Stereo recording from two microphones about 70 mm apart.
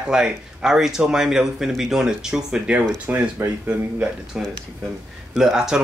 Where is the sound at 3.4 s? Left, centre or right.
Right.